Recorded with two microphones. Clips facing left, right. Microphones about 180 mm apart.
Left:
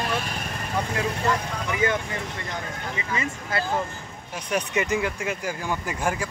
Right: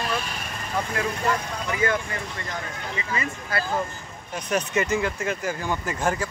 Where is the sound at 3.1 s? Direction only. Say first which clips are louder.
Even; 20° left (ahead or behind).